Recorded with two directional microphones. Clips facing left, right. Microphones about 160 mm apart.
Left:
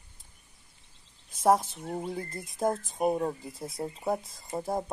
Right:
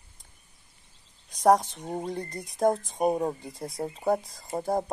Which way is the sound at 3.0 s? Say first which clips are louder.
Even; 20° right (ahead or behind).